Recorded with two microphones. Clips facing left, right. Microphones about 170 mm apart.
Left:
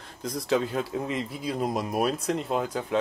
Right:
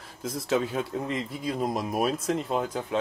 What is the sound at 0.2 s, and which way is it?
Speech, centre (ahead or behind).